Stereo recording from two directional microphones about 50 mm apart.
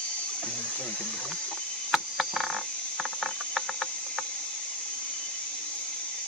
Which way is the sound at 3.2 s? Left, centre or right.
Centre.